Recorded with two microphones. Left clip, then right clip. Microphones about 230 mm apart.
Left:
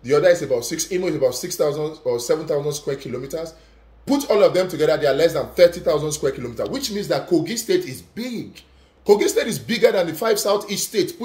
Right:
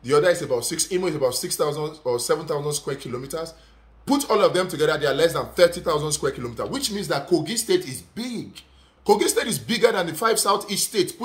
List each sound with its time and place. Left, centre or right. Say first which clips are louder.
0.0 s speech: left 3 dB; centre